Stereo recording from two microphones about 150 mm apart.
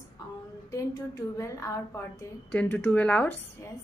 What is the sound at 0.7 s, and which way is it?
A woman's voice, 20° left (ahead or behind).